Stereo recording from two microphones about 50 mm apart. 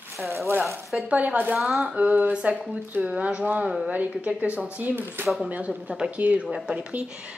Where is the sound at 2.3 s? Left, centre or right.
Centre.